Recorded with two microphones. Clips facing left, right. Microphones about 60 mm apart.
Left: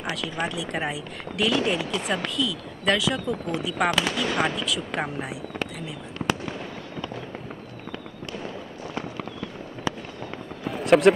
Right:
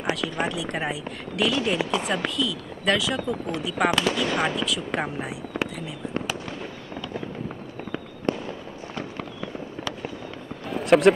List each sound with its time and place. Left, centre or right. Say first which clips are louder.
0.1 s speech: right 3 dB; centre
8.3 s fireworks: right 11 dB; right
10.6 s a sound: even; centre